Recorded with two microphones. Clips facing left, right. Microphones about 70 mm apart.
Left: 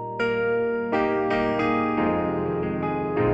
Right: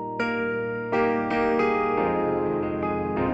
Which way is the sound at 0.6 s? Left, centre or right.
Centre.